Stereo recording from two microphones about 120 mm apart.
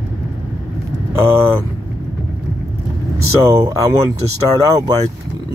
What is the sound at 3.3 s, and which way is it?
Speech, 25° right (ahead or behind).